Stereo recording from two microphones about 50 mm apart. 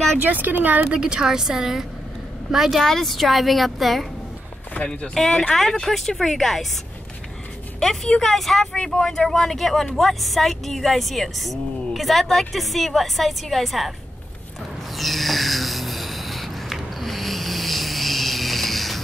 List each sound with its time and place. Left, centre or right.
0.2 s speech: right
0.8 s a woman's voice: centre
2.8 s speech: centre
4.8 s speech: centre
7.8 s speech: centre
15.0 s a sound: centre